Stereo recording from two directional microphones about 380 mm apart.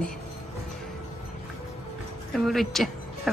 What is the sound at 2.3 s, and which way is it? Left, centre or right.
Speech, centre.